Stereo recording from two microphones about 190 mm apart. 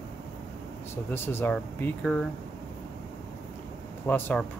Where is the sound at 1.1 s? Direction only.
10° left (ahead or behind).